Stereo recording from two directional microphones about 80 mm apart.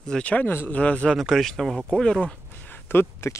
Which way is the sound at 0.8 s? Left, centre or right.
Centre.